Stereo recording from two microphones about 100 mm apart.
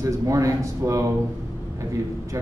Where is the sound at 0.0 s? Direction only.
30° right (ahead or behind).